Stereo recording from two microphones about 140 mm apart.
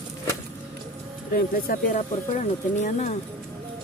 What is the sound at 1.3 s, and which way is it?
Speech, 90° left.